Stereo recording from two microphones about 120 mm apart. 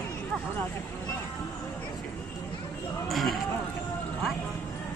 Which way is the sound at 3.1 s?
Centre (ahead or behind).